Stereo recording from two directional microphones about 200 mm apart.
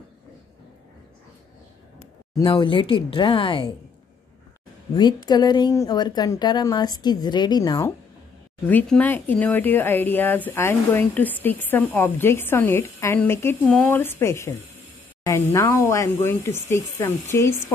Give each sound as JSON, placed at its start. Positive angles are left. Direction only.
{"t": 2.3, "sound": "speech", "side_deg": 25}
{"t": 4.9, "sound": "speech", "side_deg": 20}
{"t": 8.6, "sound": "speech", "side_deg": 5}